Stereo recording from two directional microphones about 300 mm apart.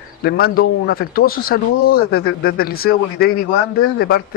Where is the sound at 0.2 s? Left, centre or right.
Left.